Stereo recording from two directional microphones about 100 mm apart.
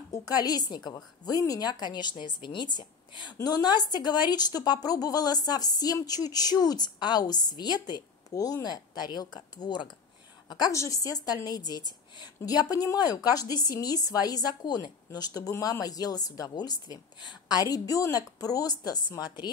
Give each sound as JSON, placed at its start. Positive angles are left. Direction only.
{"t": 0.1, "sound": "a woman's voice", "side_deg": 40}
{"t": 10.7, "sound": "a woman's voice", "side_deg": 35}